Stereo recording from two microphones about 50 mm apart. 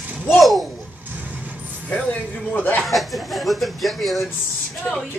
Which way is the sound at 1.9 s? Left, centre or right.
Left.